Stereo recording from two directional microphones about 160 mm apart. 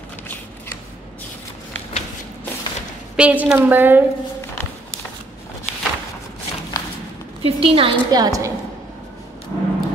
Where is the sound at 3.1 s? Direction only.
10° right (ahead or behind).